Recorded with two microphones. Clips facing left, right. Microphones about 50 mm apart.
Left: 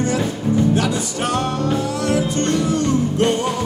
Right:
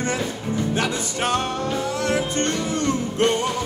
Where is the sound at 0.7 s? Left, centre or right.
Right.